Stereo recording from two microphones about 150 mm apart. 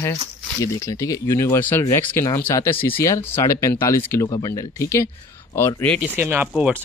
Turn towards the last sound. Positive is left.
turn(degrees=-10)  # may be behind; listen again after turning